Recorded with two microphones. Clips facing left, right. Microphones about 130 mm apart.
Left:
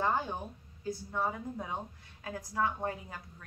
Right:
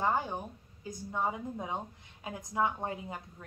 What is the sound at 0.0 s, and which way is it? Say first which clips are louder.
A woman's voice: right 1 dB; 15° right (ahead or behind).